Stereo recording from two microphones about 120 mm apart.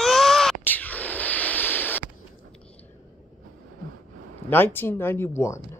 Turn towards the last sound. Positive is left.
turn(degrees=25)  # may be behind; listen again after turning